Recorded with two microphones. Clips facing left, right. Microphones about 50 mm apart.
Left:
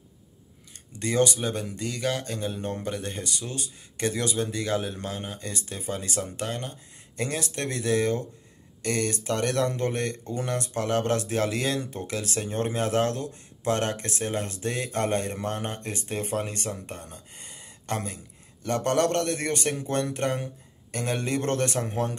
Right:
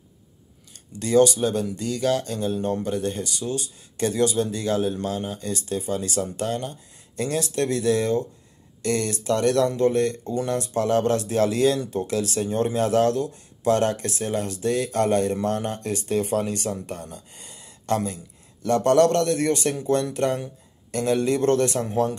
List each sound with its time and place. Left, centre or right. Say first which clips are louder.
0.9 s speech: right 6 dB; left